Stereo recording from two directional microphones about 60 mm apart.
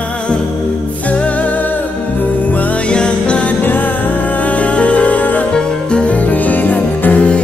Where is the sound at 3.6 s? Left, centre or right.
Left.